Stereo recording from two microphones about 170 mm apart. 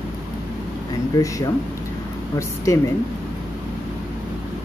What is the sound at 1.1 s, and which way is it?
A woman's voice, 20° left (ahead or behind).